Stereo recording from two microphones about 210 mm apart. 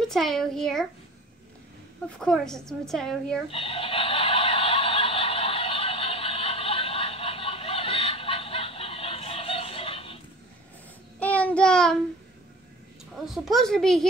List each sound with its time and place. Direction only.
0.1 s a woman's voice: centre (ahead or behind)
2.0 s a woman's voice: 5° left (ahead or behind)
3.4 s a sound: 25° left (ahead or behind)
11.1 s child singing: 5° left (ahead or behind)
13.1 s a woman's voice: centre (ahead or behind)